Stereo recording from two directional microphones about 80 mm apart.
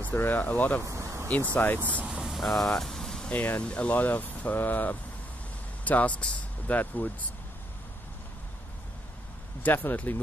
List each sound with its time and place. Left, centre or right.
0.0 s speech: left
0.8 s a sound: right
1.5 s speech: left
2.0 s a sound: centre
3.3 s speech: left
9.6 s speech: left